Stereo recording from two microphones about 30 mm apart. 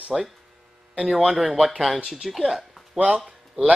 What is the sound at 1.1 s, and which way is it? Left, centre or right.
Speech, centre.